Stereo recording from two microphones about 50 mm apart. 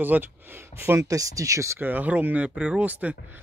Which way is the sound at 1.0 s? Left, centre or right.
Right.